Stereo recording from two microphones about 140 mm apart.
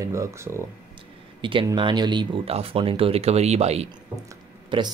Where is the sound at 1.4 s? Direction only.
40° right (ahead or behind).